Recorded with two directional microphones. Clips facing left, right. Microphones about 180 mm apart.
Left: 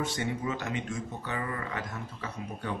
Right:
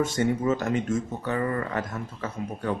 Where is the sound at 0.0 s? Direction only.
45° right (ahead or behind).